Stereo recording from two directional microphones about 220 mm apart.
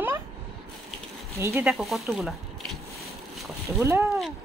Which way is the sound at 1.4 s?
10° right (ahead or behind).